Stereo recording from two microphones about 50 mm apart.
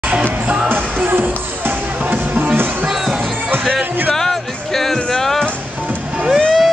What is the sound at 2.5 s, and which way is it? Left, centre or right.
Music, right.